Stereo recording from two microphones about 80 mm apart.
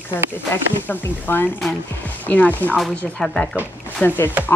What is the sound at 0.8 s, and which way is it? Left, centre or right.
Speech, left.